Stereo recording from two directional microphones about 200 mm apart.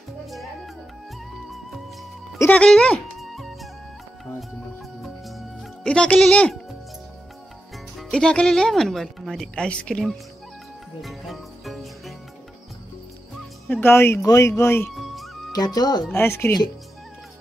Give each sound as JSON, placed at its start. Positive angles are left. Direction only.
{"t": 2.3, "sound": "music", "side_deg": 10}
{"t": 5.0, "sound": "music", "side_deg": 0}
{"t": 7.7, "sound": "speech", "side_deg": 0}
{"t": 11.0, "sound": "music", "side_deg": 0}
{"t": 13.7, "sound": "speech", "side_deg": 10}
{"t": 15.0, "sound": "music", "side_deg": 0}
{"t": 15.5, "sound": "speech", "side_deg": 20}